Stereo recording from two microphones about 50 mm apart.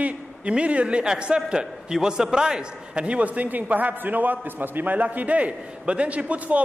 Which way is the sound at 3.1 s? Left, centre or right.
Right.